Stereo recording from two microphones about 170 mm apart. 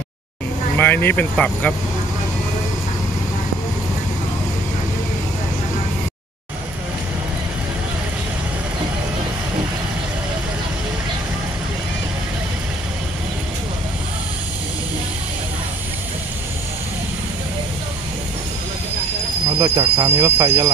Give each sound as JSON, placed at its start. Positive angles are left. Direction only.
{"t": 0.7, "sound": "speech", "side_deg": 10}
{"t": 19.6, "sound": "speech", "side_deg": -25}